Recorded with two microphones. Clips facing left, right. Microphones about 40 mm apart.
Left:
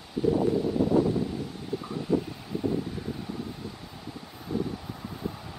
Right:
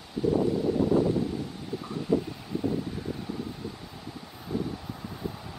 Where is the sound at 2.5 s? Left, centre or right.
Centre.